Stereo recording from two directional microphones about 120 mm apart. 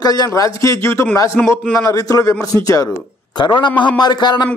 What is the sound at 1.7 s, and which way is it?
Speech, 30° left (ahead or behind).